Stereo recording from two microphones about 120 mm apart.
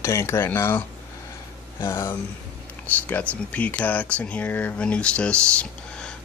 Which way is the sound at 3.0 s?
15° left (ahead or behind).